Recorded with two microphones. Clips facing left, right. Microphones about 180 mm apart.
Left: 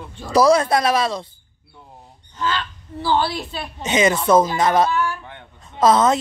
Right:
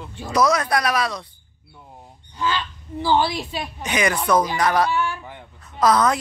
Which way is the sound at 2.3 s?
15° right (ahead or behind).